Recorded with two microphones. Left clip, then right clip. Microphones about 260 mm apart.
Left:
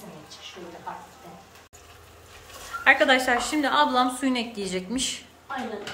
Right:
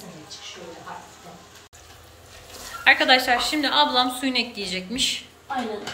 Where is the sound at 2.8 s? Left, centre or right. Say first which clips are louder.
Right 2 dB; centre.